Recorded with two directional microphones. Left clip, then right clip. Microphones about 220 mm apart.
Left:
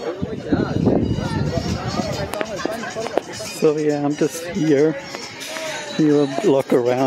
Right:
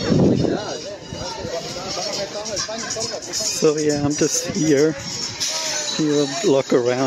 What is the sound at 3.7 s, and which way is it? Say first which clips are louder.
Speech: even; 45° left (ahead or behind).